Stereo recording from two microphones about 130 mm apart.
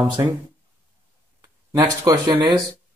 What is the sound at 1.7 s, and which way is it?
Speech, 25° right (ahead or behind).